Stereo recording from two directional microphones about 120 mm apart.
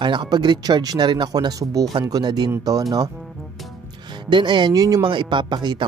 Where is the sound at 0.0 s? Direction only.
40° right (ahead or behind).